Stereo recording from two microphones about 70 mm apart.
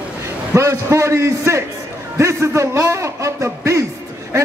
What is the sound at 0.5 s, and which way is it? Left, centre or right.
A man's voice, right.